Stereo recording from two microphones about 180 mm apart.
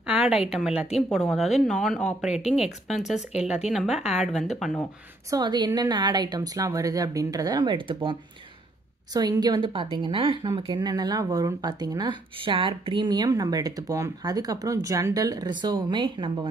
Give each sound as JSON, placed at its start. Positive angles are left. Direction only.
{"t": 0.0, "sound": "speech", "side_deg": -5}
{"t": 5.3, "sound": "speech", "side_deg": -25}